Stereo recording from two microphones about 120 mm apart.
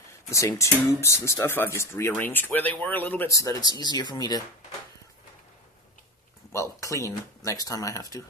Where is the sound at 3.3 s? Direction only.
25° left (ahead or behind).